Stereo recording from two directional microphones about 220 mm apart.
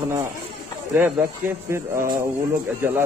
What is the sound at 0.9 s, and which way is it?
Speech, 10° right (ahead or behind).